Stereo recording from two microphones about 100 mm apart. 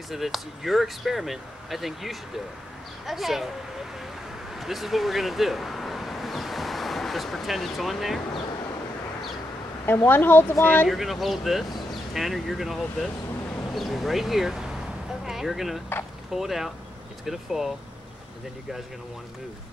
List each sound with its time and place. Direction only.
0.1 s speech: centre (ahead or behind)
4.6 s speech: centre (ahead or behind)
10.0 s speech: 20° left (ahead or behind)
10.9 s speech: centre (ahead or behind)